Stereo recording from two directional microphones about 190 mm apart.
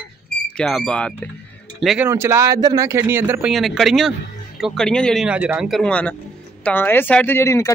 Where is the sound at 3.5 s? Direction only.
Centre (ahead or behind).